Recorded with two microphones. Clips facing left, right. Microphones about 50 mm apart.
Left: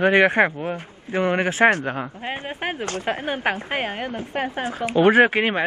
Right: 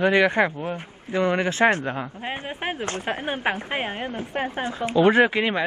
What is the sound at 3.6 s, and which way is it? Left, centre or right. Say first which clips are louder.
Speech: left 2 dB; centre.